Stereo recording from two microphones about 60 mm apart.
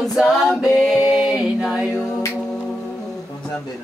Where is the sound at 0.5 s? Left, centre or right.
Centre.